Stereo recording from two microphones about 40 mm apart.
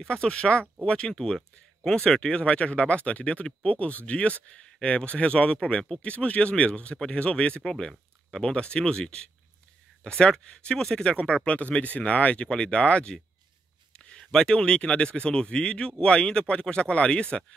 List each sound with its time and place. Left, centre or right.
0.0 s speech: left
2.2 s speech: left
12.4 s speech: left